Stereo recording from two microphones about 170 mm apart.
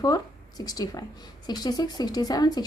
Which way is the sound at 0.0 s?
20° left (ahead or behind).